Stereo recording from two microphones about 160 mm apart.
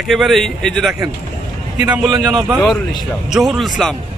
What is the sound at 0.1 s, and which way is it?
A man's voice, centre (ahead or behind).